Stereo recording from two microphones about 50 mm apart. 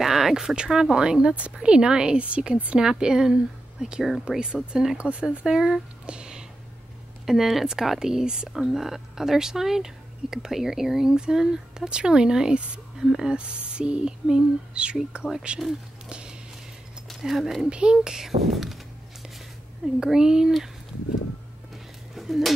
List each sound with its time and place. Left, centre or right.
0.0 s a sound: centre
0.7 s a woman's voice: centre
4.9 s a woman's voice: right
6.0 s a sound: centre
7.2 s speech: centre
13.4 s a woman's voice: right
16.1 s walk: centre
17.2 s speech: centre
17.6 s a woman's voice: right
17.9 s speech: centre
20.0 s speech: centre
22.1 s a sound: centre